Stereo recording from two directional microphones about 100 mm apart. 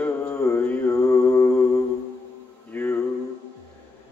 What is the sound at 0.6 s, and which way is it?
Mantra, 15° left (ahead or behind).